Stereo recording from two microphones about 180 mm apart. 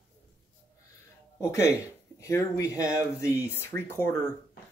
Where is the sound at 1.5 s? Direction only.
15° left (ahead or behind).